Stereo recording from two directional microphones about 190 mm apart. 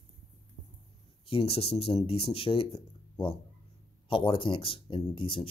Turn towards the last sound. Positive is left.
turn(degrees=30)  # may be behind; listen again after turning